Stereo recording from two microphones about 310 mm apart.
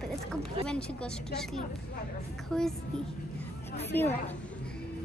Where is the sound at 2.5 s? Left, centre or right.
Centre.